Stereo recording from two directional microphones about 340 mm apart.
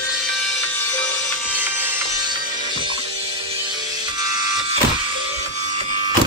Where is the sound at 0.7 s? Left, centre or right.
Centre.